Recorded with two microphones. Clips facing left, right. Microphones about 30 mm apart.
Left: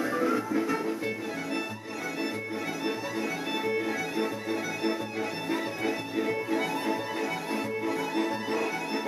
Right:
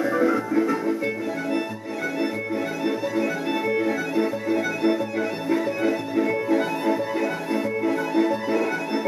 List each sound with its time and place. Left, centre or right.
0.0 s music: centre
2.8 s music: centre
6.6 s music: centre